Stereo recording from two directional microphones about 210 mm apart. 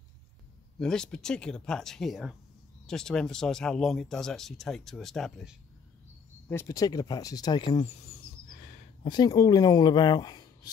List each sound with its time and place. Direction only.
0.7 s speech: 5° left (ahead or behind)
6.5 s speech: 15° left (ahead or behind)
9.0 s speech: 20° left (ahead or behind)